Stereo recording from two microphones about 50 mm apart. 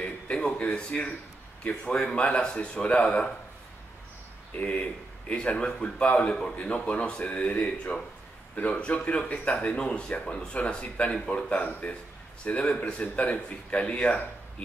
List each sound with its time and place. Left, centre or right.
0.4 s a sound: centre
0.7 s speech: left
4.6 s speech: left